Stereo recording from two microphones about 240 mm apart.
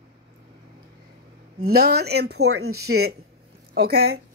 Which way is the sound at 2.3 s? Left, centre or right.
Right.